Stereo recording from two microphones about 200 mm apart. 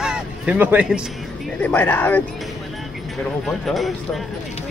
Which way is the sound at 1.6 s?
10° left (ahead or behind).